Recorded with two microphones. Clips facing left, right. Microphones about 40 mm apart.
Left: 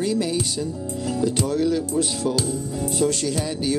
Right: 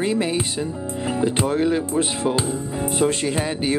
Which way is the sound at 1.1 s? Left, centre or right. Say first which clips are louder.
Right 2 dB; right.